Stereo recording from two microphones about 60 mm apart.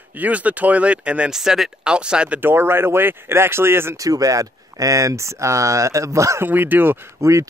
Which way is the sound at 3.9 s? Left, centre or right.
Right.